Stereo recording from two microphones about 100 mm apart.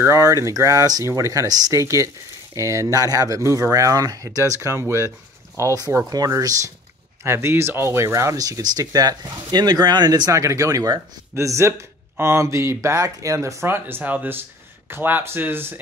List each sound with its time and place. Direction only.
0.0 s speech: 35° right (ahead or behind)